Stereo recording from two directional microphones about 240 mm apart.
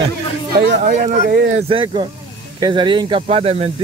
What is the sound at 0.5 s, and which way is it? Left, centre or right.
Speech, right.